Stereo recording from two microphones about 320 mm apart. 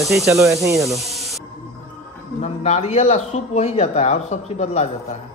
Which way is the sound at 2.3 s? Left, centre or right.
Left.